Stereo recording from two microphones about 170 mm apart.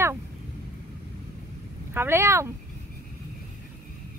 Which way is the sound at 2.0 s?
15° right (ahead or behind).